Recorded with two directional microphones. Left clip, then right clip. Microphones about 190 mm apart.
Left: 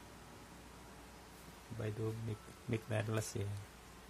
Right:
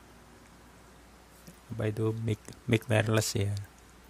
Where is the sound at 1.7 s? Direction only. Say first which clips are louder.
Right 11 dB; 55° right (ahead or behind).